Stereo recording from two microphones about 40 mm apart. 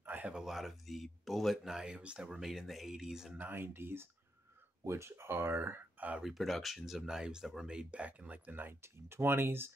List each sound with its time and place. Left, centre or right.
0.0 s a sound: right
0.3 s speech: centre
2.4 s speech: centre
3.3 s speech: right
5.1 s speech: right
6.2 s speech: centre
7.0 s speech: centre
7.6 s speech: right
8.5 s speech: right
8.8 s speech: right